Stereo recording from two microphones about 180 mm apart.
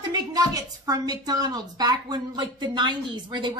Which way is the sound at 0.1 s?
20° right (ahead or behind).